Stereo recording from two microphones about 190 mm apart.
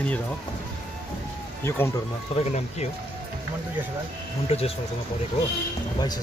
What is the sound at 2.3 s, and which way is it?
Speech, 30° left (ahead or behind).